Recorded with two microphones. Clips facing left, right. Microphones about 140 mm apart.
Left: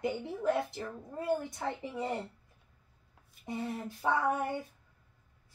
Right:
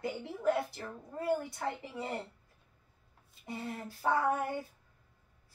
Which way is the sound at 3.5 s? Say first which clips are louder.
Left 3 dB; 20° left (ahead or behind).